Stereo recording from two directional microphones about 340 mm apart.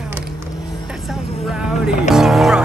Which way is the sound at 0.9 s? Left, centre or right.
Centre.